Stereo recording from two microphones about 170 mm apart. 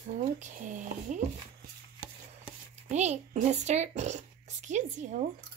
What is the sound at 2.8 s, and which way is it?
Speech, 40° right (ahead or behind).